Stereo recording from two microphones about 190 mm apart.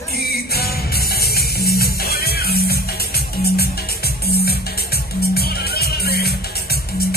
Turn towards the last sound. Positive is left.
turn(degrees=55)  # may be behind; listen again after turning